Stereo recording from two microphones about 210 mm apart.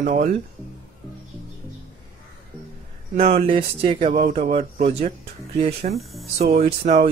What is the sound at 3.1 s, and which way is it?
Speech, 35° right (ahead or behind).